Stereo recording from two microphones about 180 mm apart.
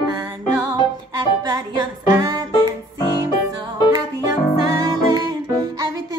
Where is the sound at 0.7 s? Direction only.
25° right (ahead or behind).